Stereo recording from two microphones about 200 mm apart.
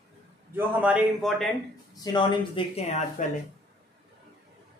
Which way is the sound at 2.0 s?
25° left (ahead or behind).